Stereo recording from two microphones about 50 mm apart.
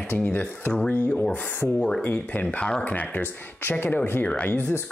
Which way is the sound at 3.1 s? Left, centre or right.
Left.